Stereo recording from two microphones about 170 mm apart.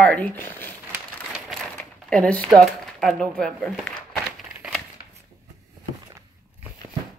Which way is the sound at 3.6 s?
5° right (ahead or behind).